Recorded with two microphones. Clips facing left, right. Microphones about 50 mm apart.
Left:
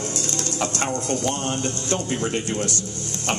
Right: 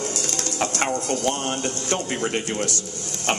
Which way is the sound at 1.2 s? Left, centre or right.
Right.